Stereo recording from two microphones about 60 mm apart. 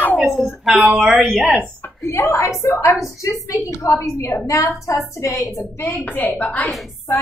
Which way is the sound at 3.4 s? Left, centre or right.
Left.